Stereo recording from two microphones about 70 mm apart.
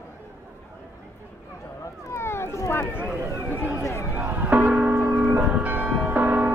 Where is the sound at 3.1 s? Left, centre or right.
Right.